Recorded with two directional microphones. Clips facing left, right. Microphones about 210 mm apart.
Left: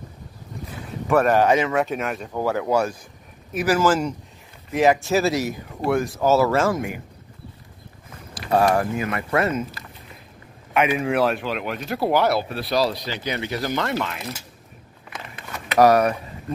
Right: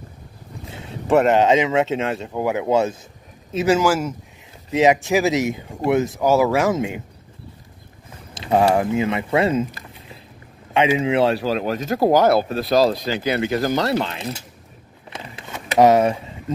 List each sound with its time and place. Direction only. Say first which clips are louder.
0.7 s speech: right 3 dB; 25° right (ahead or behind)
3.8 s speech: even; 10° right (ahead or behind)
4.6 s speech: right 2 dB; 20° right (ahead or behind)
8.4 s speech: right 2 dB; 20° right (ahead or behind)
10.7 s speech: right 3 dB; 25° right (ahead or behind)
15.0 s a sound: right 2 dB; 25° right (ahead or behind)